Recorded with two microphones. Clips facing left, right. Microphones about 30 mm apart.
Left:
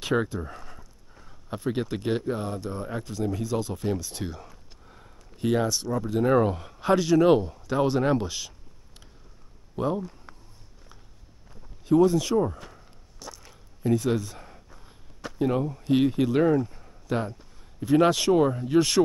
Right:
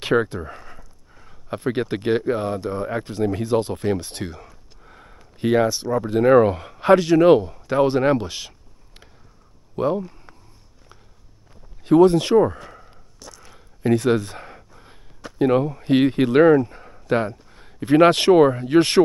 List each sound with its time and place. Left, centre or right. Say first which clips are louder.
0.4 s a sound: right 3 dB; centre
1.6 s speech: right 5 dB; right
3.0 s speech: right 6 dB; right
4.8 s a sound: right 7 dB; right
6.0 s speech: right 8 dB; right
9.8 s speech: right 6 dB; right
10.3 s a sound: right 1 dB; centre
11.8 s speech: right 6 dB; right
13.2 s biting: even; centre
13.8 s speech: right 6 dB; right